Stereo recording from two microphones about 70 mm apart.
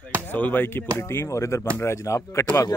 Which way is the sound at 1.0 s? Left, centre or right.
Left.